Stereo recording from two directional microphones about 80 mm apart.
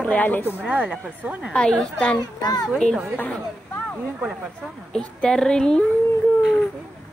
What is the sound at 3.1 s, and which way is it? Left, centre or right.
Speech, left.